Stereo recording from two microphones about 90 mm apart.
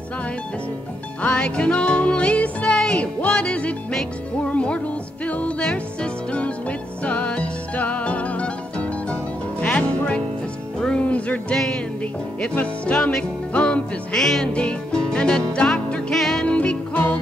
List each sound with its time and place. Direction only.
1.2 s music: 15° left (ahead or behind)
7.1 s music: 15° left (ahead or behind)
12.5 s music: 15° left (ahead or behind)
16.5 s music: 15° left (ahead or behind)